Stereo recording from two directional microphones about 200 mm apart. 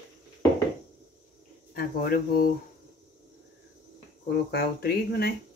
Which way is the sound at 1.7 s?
50° left (ahead or behind).